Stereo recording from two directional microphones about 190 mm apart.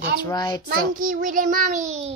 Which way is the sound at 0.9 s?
45° right (ahead or behind).